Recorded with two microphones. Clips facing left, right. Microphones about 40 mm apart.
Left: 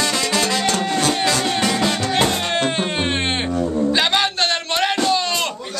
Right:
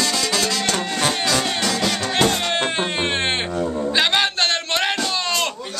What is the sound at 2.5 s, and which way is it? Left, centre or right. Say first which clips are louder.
Music: left 1 dB; centre.